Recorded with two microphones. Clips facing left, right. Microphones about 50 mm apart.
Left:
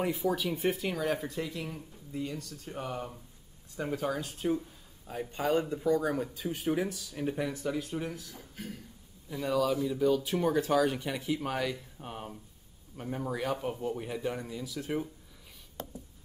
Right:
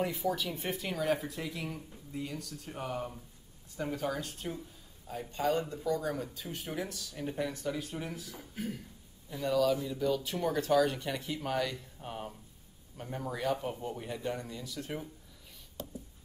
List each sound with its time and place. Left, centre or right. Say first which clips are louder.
0.1 s speech: left 3 dB; centre
6.4 s speech: left 7 dB; centre
9.3 s speech: even; centre
15.8 s writing: left 2 dB; left